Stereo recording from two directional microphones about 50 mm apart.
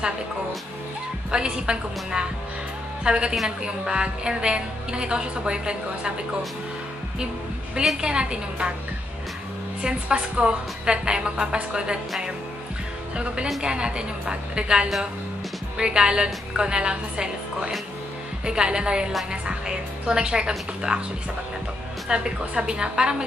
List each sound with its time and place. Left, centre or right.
1.3 s a woman's voice: centre
8.0 s a woman's voice: centre
9.8 s a woman's voice: centre
13.1 s a woman's voice: right
22.1 s a woman's voice: centre